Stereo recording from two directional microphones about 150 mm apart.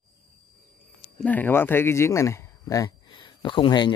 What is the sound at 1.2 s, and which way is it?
Speech, 10° left (ahead or behind).